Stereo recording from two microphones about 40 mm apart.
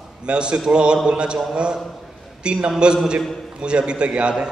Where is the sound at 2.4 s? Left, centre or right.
Right.